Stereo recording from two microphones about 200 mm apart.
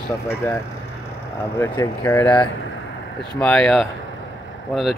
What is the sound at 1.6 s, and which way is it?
Speech, 15° left (ahead or behind).